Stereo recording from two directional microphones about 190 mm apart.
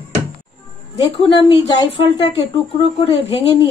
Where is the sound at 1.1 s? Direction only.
30° left (ahead or behind).